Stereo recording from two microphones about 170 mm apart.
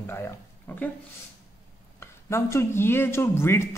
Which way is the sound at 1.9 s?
15° left (ahead or behind).